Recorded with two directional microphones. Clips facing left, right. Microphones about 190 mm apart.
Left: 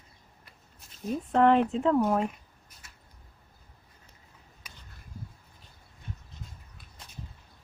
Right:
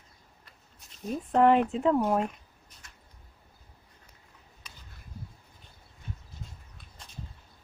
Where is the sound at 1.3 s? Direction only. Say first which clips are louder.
Even; 5° right (ahead or behind).